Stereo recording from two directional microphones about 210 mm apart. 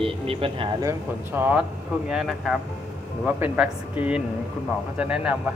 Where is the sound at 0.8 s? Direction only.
10° right (ahead or behind).